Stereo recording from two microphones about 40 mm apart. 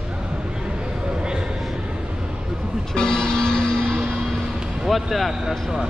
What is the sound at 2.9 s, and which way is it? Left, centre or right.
Music, centre.